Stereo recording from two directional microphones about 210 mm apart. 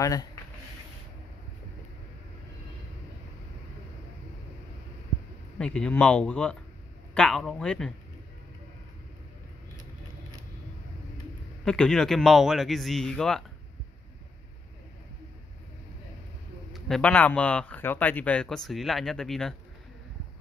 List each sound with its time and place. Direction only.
0.0 s speech: 15° left (ahead or behind)
5.6 s speech: 5° left (ahead or behind)
11.6 s speech: 5° left (ahead or behind)
16.7 s speech: centre (ahead or behind)